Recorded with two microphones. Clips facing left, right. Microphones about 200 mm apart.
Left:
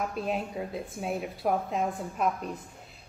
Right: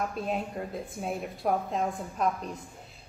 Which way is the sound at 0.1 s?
Centre (ahead or behind).